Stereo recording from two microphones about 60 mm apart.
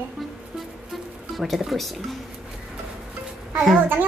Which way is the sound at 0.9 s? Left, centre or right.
Centre.